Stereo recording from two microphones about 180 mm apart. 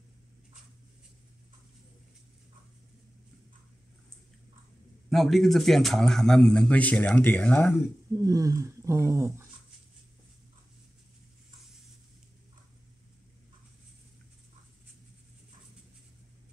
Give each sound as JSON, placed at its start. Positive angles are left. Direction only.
{"t": 5.1, "sound": "a man's voice", "side_deg": 0}
{"t": 8.2, "sound": "speech", "side_deg": -20}